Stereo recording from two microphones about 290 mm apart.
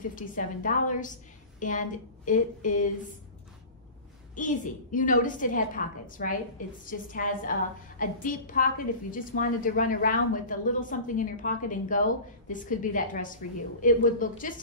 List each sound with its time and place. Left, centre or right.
0.1 s a woman's voice: left
4.4 s a woman's voice: left